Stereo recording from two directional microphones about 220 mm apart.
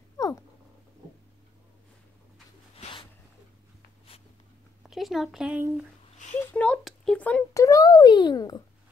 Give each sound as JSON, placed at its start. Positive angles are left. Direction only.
{"t": 0.2, "sound": "cat", "side_deg": 15}
{"t": 2.7, "sound": "a sound", "side_deg": 25}
{"t": 4.8, "sound": "speech", "side_deg": 0}
{"t": 6.4, "sound": "a child's voice", "side_deg": 5}